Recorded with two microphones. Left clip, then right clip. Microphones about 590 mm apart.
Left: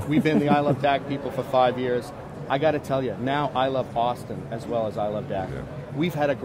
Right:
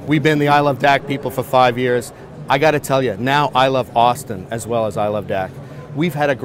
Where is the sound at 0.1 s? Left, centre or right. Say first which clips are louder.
Right 7 dB; right.